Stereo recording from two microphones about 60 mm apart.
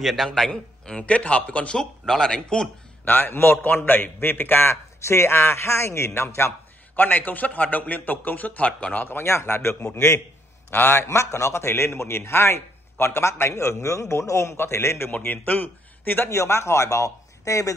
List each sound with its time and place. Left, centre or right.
0.0 s a man's voice: centre; by 1.8 s left
1.8 s a man's voice: centre
3.1 s a man's voice: left
7.0 s a man's voice: left
8.9 s speech: left
9.2 s a man's voice: left
15.0 s a man's voice: left
16.3 s a man's voice: left